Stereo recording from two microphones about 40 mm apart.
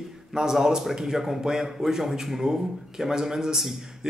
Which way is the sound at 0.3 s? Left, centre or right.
Centre.